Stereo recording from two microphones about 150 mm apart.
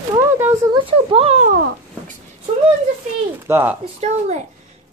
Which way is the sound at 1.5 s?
65° right (ahead or behind).